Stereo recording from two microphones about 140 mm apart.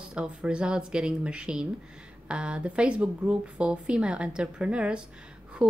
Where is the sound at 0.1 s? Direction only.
5° right (ahead or behind).